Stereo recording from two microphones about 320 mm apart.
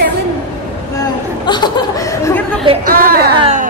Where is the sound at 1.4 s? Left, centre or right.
Centre.